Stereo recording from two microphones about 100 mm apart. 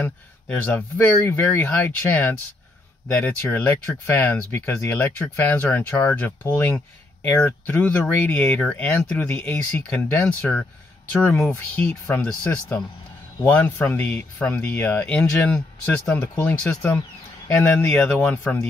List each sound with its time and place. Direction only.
0.0 s speech: 15° left (ahead or behind)
10.2 s speech: 10° left (ahead or behind); by 18.0 s 25° left (ahead or behind)
18.0 s speech: 10° left (ahead or behind)